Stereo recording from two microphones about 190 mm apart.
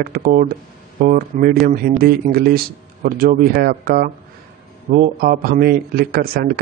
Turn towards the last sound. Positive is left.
turn(degrees=-50)  # may be behind; listen again after turning